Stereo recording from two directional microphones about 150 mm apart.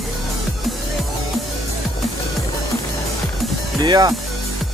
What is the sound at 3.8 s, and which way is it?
Speech, 25° right (ahead or behind).